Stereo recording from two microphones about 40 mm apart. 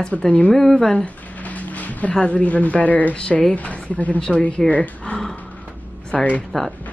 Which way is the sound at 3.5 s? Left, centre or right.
Left.